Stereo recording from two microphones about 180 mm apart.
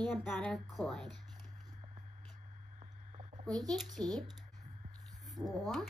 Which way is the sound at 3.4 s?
5° left (ahead or behind).